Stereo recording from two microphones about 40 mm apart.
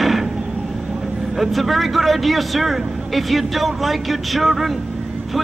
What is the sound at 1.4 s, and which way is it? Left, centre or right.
Speech, centre.